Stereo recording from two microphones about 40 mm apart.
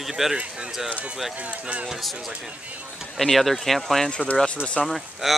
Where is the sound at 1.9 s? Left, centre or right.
Centre.